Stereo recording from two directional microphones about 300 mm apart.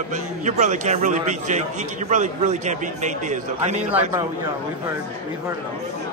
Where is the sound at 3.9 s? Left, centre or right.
Centre.